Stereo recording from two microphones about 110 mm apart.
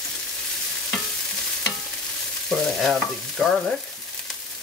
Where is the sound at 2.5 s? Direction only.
Centre (ahead or behind).